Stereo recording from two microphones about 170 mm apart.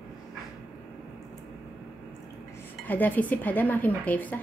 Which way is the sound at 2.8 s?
10° left (ahead or behind).